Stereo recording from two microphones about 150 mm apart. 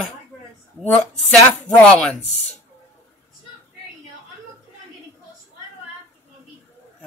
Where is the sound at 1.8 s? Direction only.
5° left (ahead or behind).